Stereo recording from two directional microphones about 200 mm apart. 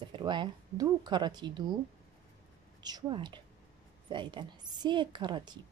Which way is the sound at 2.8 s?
20° right (ahead or behind).